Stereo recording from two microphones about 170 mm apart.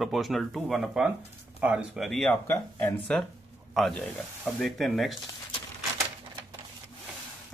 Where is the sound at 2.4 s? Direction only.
15° left (ahead or behind).